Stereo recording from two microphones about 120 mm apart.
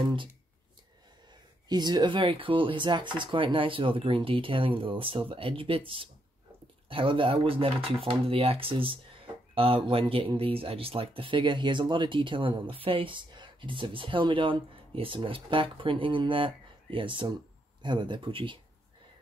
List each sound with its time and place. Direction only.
1.7 s speech: 35° right (ahead or behind)